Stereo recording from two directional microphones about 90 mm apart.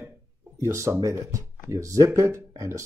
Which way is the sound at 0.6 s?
30° right (ahead or behind).